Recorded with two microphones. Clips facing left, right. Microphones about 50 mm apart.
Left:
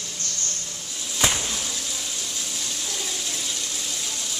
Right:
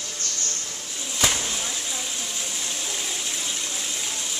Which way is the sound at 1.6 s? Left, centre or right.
Centre.